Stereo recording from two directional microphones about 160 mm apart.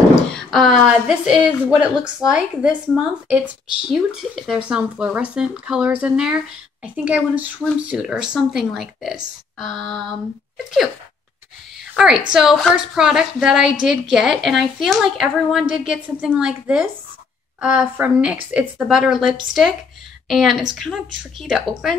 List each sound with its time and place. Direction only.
0.3 s a woman's voice: centre (ahead or behind)
11.8 s a sound: centre (ahead or behind)
12.3 s a woman's voice: 5° right (ahead or behind)